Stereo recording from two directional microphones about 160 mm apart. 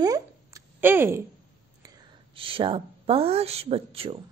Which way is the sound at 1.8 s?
30° right (ahead or behind).